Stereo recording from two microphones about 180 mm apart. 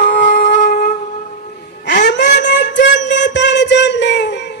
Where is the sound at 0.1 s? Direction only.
45° left (ahead or behind).